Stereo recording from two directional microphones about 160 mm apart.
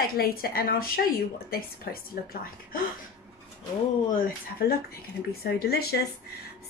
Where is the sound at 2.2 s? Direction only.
80° left.